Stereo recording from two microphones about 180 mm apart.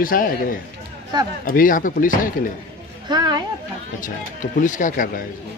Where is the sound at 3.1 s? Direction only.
25° right (ahead or behind).